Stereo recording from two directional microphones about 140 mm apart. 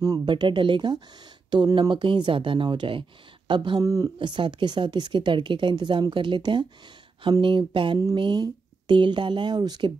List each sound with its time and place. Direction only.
0.0 s speech: 30° right (ahead or behind)
3.8 s speech: 25° right (ahead or behind)